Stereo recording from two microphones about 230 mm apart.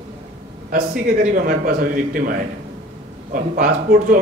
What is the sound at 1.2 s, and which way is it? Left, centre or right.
A man's voice, right.